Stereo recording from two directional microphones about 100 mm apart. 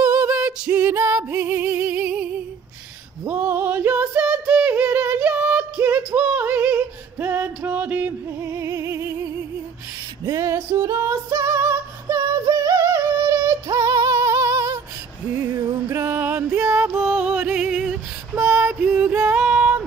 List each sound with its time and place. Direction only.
0.0 s female singing: 15° right (ahead or behind)
0.9 s music: 25° right (ahead or behind)
4.2 s a sound: 10° right (ahead or behind)
8.5 s music: 30° right (ahead or behind)
10.3 s female singing: 30° right (ahead or behind)
13.7 s music: 35° right (ahead or behind)
15.5 s music: 45° right (ahead or behind)
15.9 s music: 20° right (ahead or behind)
16.4 s music: 30° right (ahead or behind)
17.2 s music: 15° right (ahead or behind)